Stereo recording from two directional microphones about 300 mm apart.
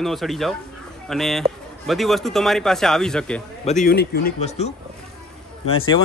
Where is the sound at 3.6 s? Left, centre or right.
Left.